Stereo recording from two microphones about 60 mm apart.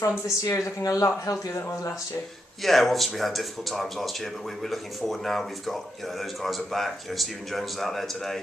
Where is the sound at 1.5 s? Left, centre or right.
Left.